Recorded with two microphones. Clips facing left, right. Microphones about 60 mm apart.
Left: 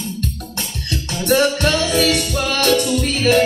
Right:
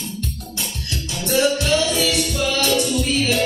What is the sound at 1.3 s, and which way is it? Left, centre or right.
Music, left.